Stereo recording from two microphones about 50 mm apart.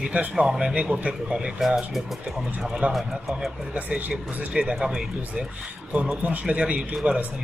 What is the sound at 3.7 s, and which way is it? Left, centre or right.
Speech, right.